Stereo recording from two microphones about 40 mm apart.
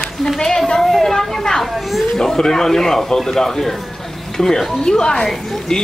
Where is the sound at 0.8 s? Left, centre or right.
Centre.